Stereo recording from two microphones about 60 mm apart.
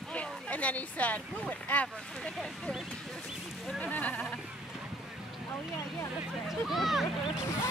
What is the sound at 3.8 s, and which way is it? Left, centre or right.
Speech, left.